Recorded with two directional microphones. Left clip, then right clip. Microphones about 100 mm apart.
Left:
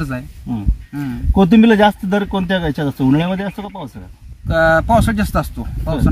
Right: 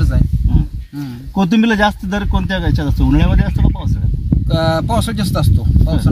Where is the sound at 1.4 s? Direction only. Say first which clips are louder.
Left 3 dB; 30° left (ahead or behind).